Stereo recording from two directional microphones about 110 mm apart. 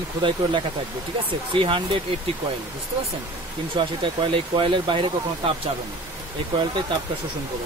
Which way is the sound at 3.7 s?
50° right (ahead or behind).